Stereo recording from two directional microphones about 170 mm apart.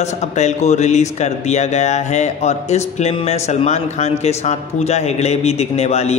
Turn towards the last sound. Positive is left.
turn(degrees=40)  # may be behind; listen again after turning